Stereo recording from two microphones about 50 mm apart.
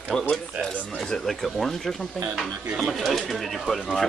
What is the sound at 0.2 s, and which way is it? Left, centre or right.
Speech, left.